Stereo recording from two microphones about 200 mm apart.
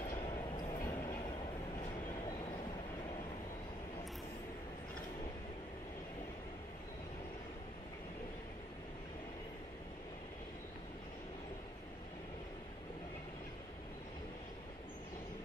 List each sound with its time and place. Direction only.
0.6 s basketball bounce: 20° left (ahead or behind)